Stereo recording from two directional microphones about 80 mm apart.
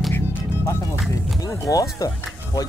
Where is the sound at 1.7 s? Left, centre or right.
Left.